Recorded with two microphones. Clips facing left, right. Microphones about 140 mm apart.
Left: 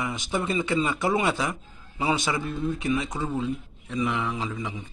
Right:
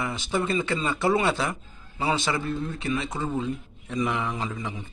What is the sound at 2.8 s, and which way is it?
Speech, 15° left (ahead or behind).